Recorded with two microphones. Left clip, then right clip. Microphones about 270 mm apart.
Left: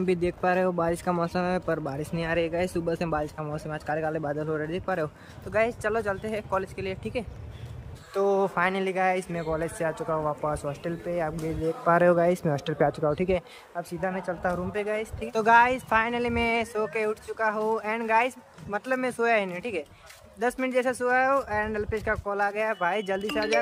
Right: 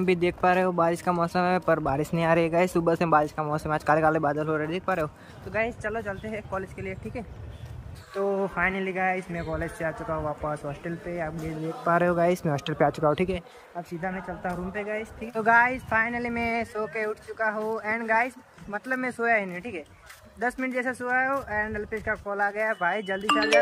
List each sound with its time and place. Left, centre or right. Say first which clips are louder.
0.0 s speech: right 3 dB; centre
5.5 s speech: left 3 dB; centre
8.2 s speech: left 2 dB; centre
13.3 s speech: left 5 dB; centre
15.4 s speech: left 1 dB; centre
15.7 s speech: left 1 dB; centre
17.0 s speech: left 1 dB; centre